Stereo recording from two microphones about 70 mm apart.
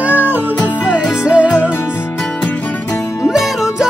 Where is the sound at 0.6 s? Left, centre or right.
Left.